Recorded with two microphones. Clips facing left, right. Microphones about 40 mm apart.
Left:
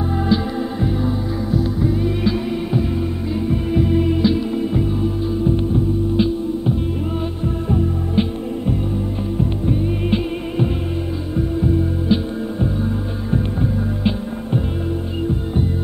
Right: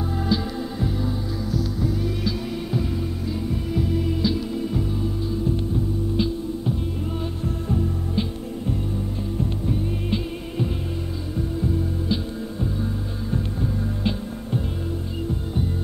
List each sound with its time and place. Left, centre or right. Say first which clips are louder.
0.3 s music: left 5 dB; left